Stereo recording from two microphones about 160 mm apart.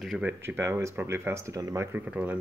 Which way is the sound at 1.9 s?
10° right (ahead or behind).